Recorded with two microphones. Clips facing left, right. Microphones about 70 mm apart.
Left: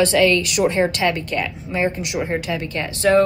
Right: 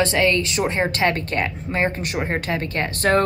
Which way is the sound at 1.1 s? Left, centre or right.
Right.